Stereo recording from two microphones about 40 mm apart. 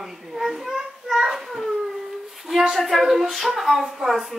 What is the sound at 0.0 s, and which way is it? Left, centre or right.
A child's voice, centre.